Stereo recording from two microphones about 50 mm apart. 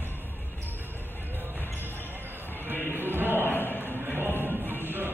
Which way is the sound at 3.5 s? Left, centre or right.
Left.